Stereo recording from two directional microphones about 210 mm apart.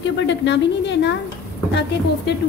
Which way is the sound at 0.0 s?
55° left (ahead or behind).